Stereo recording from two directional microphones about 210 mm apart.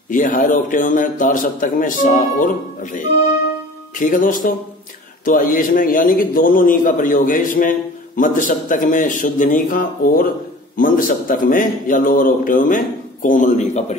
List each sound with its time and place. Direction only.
0.1 s a man's voice: 40° left (ahead or behind)